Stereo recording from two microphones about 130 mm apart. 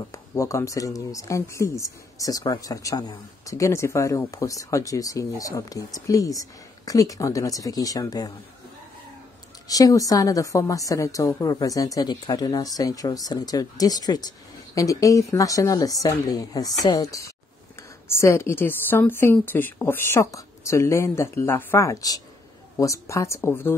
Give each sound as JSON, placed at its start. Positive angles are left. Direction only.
{"t": 0.1, "sound": "speech", "side_deg": 25}
{"t": 9.7, "sound": "speech", "side_deg": 30}